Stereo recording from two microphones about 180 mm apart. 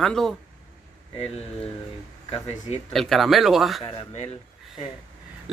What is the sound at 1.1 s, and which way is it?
Speech, 35° left (ahead or behind).